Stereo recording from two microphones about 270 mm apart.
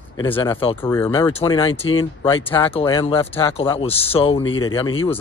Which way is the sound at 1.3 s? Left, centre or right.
Centre.